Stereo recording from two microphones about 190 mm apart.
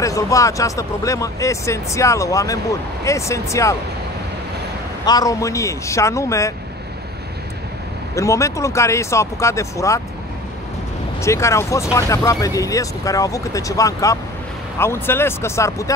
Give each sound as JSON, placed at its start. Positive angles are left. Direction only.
{"t": 0.0, "sound": "speech", "side_deg": 15}
{"t": 5.0, "sound": "speech", "side_deg": 20}
{"t": 8.1, "sound": "speech", "side_deg": 15}
{"t": 11.1, "sound": "speech", "side_deg": 15}